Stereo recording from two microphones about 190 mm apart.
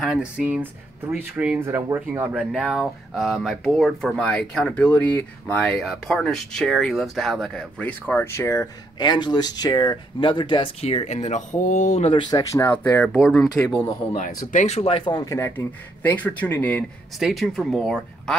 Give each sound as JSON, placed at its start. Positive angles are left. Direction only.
{"t": 0.0, "sound": "speech", "side_deg": -5}
{"t": 12.1, "sound": "speech", "side_deg": 20}
{"t": 14.1, "sound": "speech", "side_deg": 40}